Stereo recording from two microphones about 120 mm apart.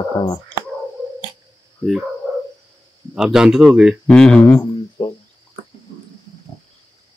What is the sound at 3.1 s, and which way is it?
Speech, 5° right (ahead or behind).